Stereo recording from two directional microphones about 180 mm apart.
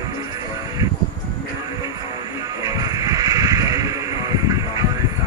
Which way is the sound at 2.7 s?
20° right (ahead or behind).